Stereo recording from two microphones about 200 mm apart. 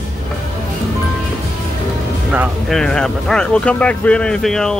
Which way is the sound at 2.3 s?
Centre (ahead or behind).